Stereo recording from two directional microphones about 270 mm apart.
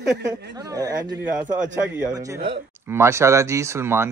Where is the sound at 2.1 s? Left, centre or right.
Centre.